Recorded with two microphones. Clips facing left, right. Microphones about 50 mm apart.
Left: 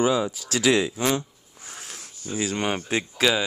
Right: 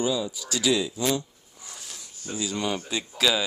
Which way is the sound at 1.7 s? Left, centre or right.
Left.